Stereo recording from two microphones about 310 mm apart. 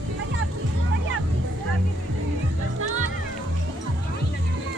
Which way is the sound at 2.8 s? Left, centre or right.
Right.